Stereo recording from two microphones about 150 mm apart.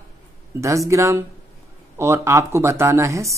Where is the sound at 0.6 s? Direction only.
20° right (ahead or behind).